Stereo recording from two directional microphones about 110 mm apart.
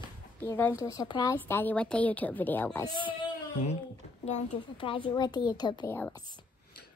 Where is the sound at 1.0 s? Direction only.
40° left (ahead or behind).